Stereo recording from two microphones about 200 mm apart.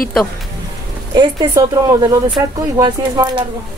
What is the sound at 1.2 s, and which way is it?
A woman's voice, 20° right (ahead or behind).